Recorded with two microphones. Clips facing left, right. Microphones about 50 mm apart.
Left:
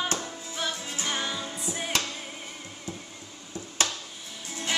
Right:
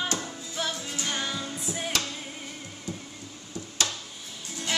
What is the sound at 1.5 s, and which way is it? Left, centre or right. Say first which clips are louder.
Music: even; centre.